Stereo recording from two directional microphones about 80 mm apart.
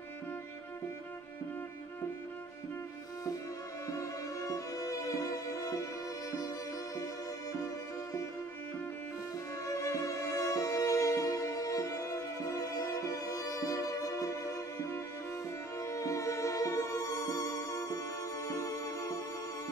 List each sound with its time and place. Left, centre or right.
3.8 s music: left
7.6 s music: left
9.7 s music: left